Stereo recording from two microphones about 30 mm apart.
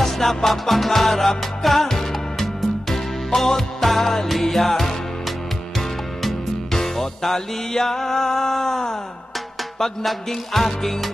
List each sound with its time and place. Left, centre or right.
0.0 s music: centre
10.0 s music: centre